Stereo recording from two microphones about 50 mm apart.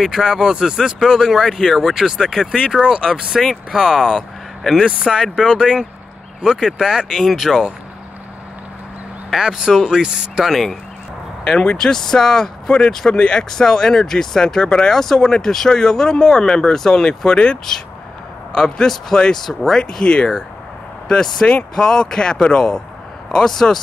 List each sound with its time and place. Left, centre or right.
0.0 s speech: centre
9.3 s speech: centre
9.8 s speech: centre
10.4 s speech: centre
11.4 s speech: centre